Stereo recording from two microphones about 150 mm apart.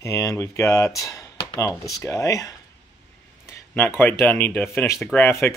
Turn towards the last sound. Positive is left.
turn(degrees=15)  # may be behind; listen again after turning